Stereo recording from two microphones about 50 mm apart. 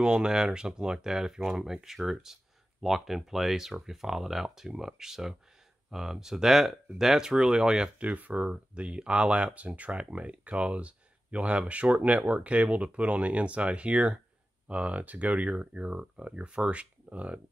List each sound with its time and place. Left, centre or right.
0.0 s speech: centre
8.0 s speech: right